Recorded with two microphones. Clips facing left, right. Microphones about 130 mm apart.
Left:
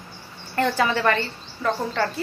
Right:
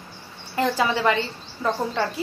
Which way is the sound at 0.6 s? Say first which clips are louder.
Even; 15° right (ahead or behind).